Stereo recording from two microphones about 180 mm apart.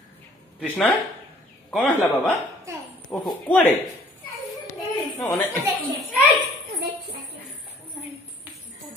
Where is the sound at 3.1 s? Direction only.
25° left (ahead or behind).